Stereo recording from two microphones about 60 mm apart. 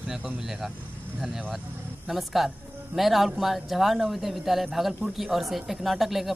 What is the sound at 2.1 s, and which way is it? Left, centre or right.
A man's voice, centre.